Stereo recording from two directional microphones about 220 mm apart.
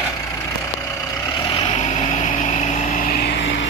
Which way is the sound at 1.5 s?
25° left (ahead or behind).